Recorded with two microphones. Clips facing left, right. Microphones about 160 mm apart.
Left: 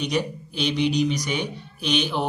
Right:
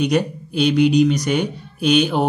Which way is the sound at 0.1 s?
50° right (ahead or behind).